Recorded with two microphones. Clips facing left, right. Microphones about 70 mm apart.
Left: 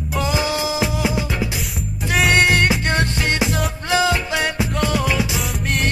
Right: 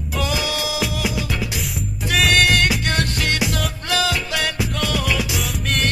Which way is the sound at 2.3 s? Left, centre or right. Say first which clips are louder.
Left 2 dB; left.